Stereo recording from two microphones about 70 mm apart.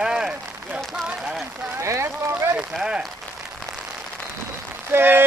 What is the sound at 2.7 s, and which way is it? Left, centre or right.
Speech, centre.